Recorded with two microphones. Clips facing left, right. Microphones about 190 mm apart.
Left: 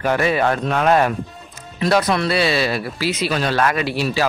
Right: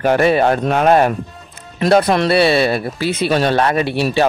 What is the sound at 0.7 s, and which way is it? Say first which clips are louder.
Speech: right 3 dB; 45° right (ahead or behind).